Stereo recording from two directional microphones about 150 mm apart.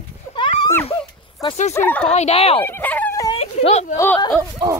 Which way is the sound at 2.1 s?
45° left (ahead or behind).